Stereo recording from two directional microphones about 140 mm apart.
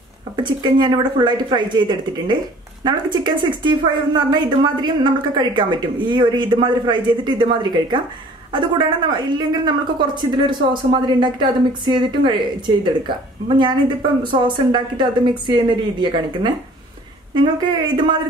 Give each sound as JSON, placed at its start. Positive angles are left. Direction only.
{"t": 0.4, "sound": "a woman's voice", "side_deg": -35}